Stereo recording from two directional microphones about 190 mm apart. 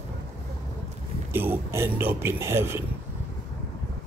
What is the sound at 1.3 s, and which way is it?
Speech, 10° right (ahead or behind).